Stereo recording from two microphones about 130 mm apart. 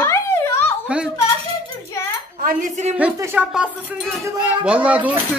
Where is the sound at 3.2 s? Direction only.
20° right (ahead or behind).